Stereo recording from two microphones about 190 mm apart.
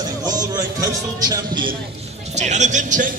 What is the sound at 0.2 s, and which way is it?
A man's voice, 20° right (ahead or behind).